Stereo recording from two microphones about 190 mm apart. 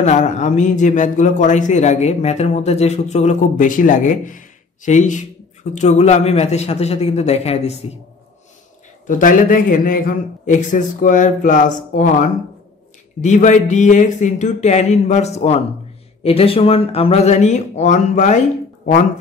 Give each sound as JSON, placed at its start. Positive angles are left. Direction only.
{"t": 0.0, "sound": "a man's voice", "side_deg": 40}
{"t": 9.0, "sound": "a man's voice", "side_deg": 45}